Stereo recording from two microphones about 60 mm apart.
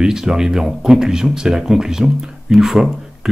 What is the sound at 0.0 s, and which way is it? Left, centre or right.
Speech, centre.